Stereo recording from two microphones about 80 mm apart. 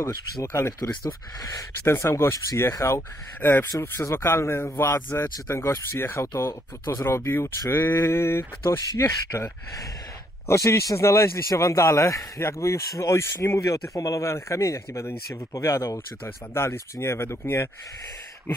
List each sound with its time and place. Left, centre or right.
0.0 s speech: left
1.9 s speech: left
8.8 s speech: left
13.6 s speech: left
16.5 s speech: left